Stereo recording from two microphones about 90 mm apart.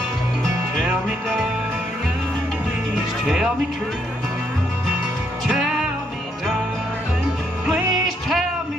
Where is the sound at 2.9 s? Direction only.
5° right (ahead or behind).